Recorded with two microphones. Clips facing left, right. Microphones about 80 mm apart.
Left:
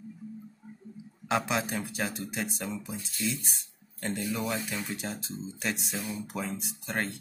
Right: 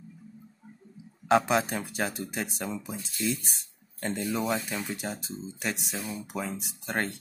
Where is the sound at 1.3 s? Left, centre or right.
Right.